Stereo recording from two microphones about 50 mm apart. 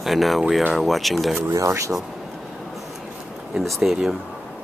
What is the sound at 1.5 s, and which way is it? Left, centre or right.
Speech, right.